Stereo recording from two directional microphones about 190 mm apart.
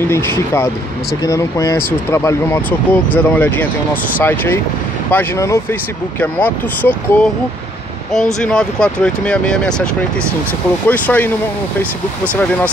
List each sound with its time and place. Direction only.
0.1 s speech: 15° left (ahead or behind)
8.4 s speech: 5° left (ahead or behind)
10.9 s speech: 10° left (ahead or behind)